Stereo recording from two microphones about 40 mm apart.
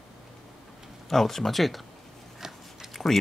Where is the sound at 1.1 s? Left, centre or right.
Centre.